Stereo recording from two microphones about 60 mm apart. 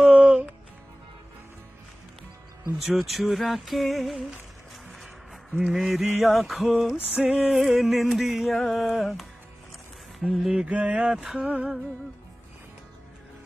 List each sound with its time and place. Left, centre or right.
0.0 s music: right
2.8 s a sound: centre
5.6 s a sound: centre
10.1 s speech: centre
10.5 s mantra: right
11.4 s mantra: right